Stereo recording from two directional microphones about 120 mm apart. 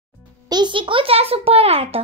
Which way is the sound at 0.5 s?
40° right (ahead or behind).